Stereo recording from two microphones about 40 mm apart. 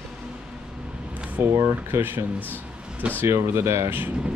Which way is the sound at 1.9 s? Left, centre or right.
Right.